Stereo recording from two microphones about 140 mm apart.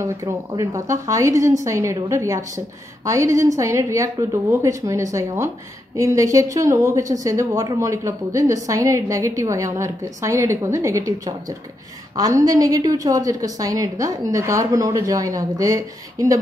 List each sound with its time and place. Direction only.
0.0 s a woman's voice: 20° right (ahead or behind)